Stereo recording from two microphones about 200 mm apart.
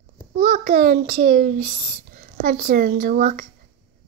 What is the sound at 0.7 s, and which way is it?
Speech, 50° right (ahead or behind).